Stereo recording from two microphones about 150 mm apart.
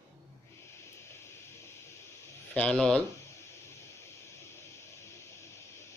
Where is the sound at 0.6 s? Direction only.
15° left (ahead or behind).